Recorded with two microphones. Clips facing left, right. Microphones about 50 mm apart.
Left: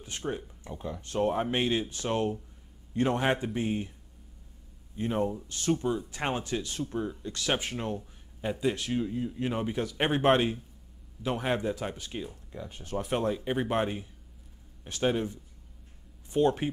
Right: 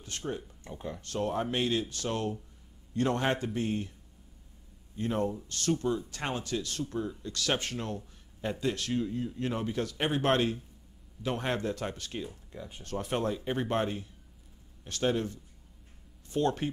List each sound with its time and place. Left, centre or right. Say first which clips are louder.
0.0 s speech: left 2 dB; centre
4.9 s speech: left 1 dB; centre
9.9 s speech: left 4 dB; left
10.2 s speech: left 4 dB; centre